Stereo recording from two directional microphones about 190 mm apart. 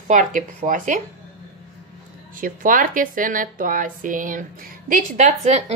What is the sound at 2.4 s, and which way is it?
Speech, 45° right (ahead or behind).